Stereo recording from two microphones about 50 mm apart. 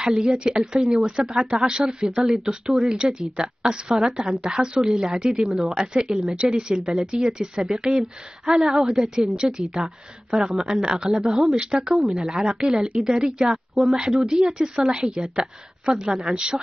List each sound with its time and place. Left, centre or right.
0.0 s a woman's voice: centre